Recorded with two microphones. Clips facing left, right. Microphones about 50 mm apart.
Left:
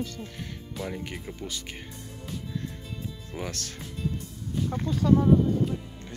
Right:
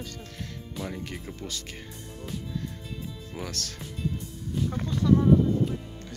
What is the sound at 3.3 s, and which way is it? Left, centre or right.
Speech, left.